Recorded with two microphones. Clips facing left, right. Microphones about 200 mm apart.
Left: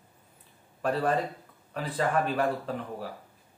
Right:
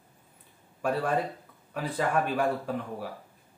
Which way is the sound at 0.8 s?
10° right (ahead or behind).